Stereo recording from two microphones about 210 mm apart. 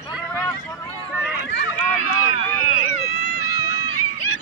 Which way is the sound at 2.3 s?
90° left.